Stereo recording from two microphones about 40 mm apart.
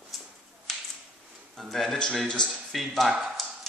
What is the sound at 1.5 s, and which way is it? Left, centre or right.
Speech, centre.